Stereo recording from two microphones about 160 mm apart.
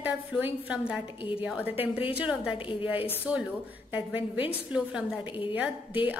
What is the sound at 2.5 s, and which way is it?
Speech, 35° left (ahead or behind).